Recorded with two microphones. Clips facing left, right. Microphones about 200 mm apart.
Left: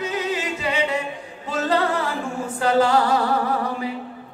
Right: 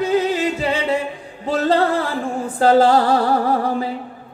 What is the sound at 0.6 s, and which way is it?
A capella, 35° right (ahead or behind).